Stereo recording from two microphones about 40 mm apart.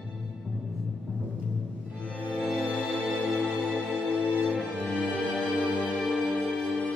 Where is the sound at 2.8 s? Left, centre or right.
Left.